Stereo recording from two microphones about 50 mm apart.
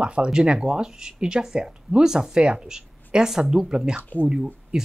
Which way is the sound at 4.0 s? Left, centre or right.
Left.